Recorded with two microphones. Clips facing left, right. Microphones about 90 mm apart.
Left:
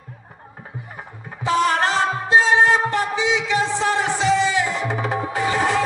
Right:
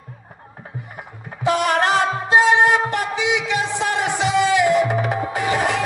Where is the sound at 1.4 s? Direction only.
65° right (ahead or behind).